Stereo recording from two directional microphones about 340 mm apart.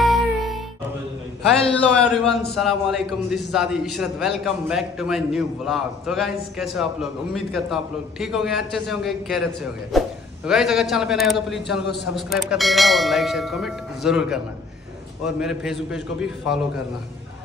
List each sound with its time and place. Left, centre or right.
0.0 s music: centre
1.8 s a man's voice: centre
11.8 s a man's voice: left
12.2 s a man's voice: centre